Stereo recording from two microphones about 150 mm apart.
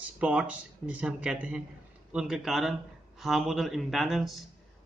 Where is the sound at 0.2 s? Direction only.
10° right (ahead or behind).